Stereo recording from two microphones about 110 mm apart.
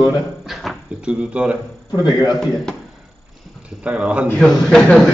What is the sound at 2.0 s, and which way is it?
Speech, 40° left (ahead or behind).